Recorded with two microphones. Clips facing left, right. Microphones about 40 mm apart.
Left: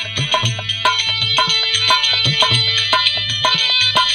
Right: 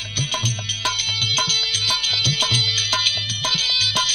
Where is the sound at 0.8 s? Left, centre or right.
Left.